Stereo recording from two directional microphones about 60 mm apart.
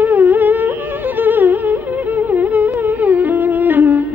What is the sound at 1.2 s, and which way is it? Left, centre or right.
Music, right.